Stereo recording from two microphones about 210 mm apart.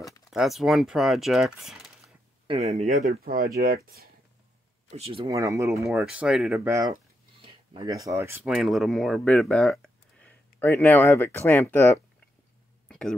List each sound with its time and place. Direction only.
0.0 s speech: centre (ahead or behind)
2.4 s speech: 30° right (ahead or behind); by 4.1 s 45° right (ahead or behind)
4.9 s speech: 30° right (ahead or behind)
5.2 s speech: 15° right (ahead or behind)
7.4 s speech: 20° right (ahead or behind); by 11.9 s 10° left (ahead or behind)
12.8 s a sound: 5° left (ahead or behind)